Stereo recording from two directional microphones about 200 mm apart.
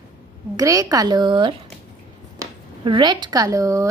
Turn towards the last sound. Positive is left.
turn(degrees=-15)  # may be behind; listen again after turning